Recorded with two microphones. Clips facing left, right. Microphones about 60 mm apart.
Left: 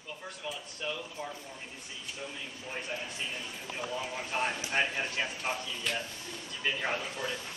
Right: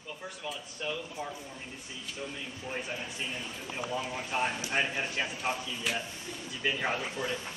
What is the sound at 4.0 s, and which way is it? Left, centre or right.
A woman's voice, centre.